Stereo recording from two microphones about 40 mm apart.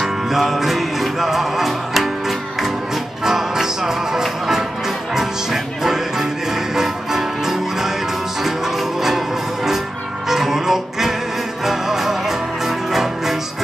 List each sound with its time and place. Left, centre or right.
0.0 s music: centre
10.3 s music: centre